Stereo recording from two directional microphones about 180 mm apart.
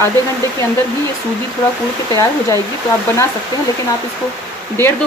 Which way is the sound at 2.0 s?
15° left (ahead or behind).